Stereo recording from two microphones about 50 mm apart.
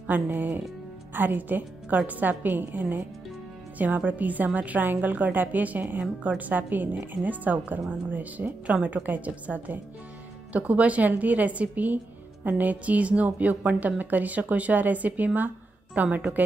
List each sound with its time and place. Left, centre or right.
0.1 s a woman's voice: right